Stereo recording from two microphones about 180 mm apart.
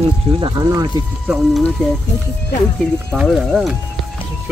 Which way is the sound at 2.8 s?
Centre (ahead or behind).